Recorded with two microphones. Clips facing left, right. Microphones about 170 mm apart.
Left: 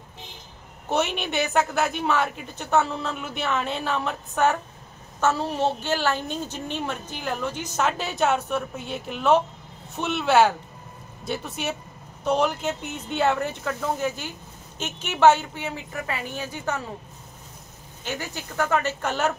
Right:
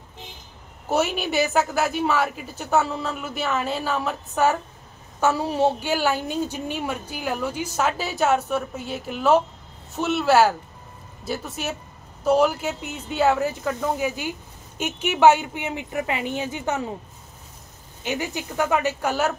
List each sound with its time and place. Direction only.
0.8 s a woman's voice: 5° right (ahead or behind)
18.0 s a woman's voice: 15° right (ahead or behind)